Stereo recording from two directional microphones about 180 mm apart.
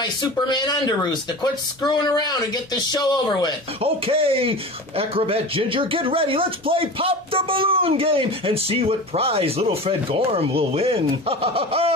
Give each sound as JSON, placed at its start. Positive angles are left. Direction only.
{"t": 0.0, "sound": "speech", "side_deg": 25}
{"t": 3.8, "sound": "speech", "side_deg": -30}